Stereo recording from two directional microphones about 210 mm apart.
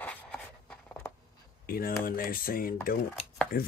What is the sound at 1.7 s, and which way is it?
Speech, 45° left (ahead or behind).